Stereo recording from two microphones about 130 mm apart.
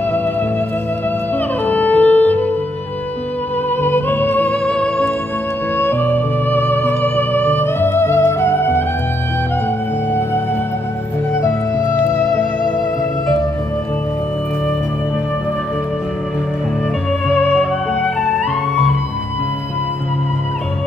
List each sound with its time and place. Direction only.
1.7 s music: 10° left (ahead or behind)
3.8 s music: 15° left (ahead or behind)
17.4 s music: 15° left (ahead or behind)